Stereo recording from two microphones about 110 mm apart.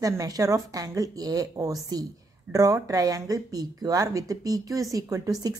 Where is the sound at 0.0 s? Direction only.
30° right (ahead or behind).